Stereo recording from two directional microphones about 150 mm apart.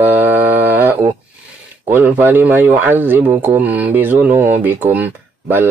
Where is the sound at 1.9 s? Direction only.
10° right (ahead or behind).